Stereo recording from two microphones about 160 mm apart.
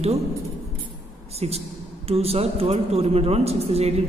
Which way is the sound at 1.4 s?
40° right (ahead or behind).